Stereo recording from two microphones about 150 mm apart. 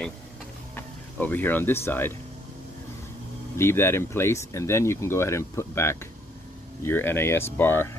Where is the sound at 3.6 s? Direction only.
15° left (ahead or behind).